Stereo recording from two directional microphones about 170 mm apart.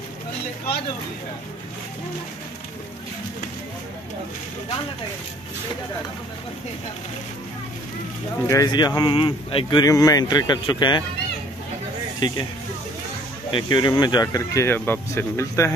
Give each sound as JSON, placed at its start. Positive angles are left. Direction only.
{"t": 8.5, "sound": "speech", "side_deg": 20}
{"t": 12.2, "sound": "speech", "side_deg": 25}
{"t": 13.5, "sound": "speech", "side_deg": 30}